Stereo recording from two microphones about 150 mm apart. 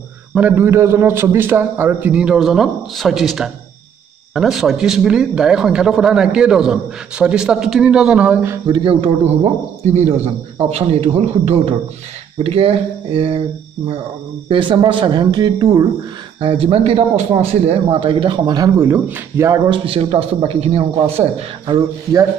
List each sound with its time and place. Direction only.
0.3 s a man's voice: 10° right (ahead or behind)
8.6 s a man's voice: 35° right (ahead or behind)
14.5 s speech: 35° right (ahead or behind)
16.3 s speech: 40° right (ahead or behind)
18.8 s speech: 15° right (ahead or behind)
19.8 s speech: 40° right (ahead or behind)
21.6 s speech: 25° right (ahead or behind)